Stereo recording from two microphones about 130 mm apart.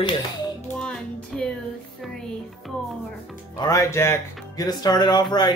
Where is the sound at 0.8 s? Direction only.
5° left (ahead or behind).